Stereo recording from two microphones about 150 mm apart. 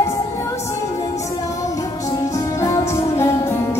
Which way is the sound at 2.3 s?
20° left (ahead or behind).